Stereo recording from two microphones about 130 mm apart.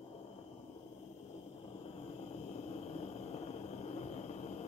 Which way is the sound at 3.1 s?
55° left (ahead or behind).